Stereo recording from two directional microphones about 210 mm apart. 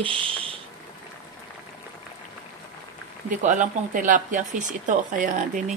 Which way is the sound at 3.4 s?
40° right (ahead or behind).